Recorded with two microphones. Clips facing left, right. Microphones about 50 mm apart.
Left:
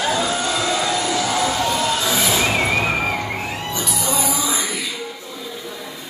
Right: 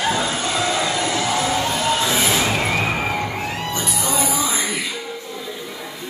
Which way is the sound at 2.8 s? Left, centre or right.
Centre.